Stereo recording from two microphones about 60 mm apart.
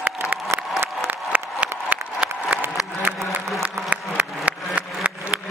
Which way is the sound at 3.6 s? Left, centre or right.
Right.